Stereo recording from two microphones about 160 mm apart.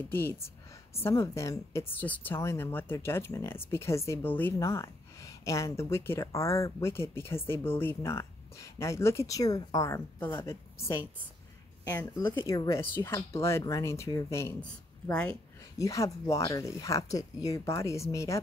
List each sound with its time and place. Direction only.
0.1 s speech: 15° left (ahead or behind)
15.8 s speech: 20° left (ahead or behind)